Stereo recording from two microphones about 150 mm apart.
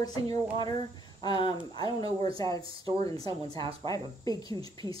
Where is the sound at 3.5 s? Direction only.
35° right (ahead or behind).